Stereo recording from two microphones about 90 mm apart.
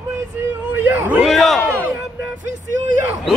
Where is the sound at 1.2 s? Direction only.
Centre (ahead or behind).